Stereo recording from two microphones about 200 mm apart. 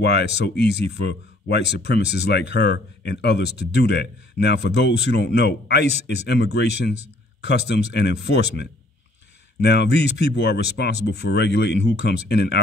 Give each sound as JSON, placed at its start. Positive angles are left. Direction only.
{"t": 0.0, "sound": "speech", "side_deg": 55}